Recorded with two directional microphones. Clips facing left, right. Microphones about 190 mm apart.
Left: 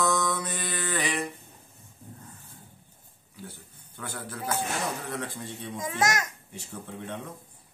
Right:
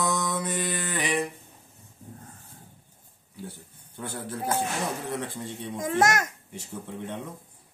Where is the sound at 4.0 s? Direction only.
30° right (ahead or behind).